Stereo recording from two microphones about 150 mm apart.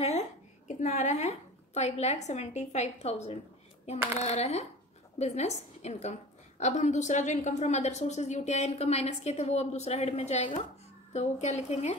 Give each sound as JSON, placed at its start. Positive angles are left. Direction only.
{"t": 0.0, "sound": "a woman's voice", "side_deg": 50}